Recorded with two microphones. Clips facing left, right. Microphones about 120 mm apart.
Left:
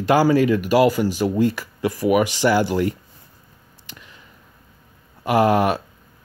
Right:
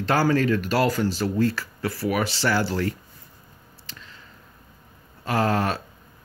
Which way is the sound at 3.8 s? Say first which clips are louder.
Left 2 dB; 15° left (ahead or behind).